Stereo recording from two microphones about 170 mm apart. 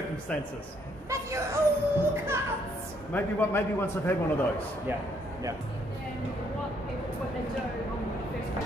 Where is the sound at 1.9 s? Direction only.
15° right (ahead or behind).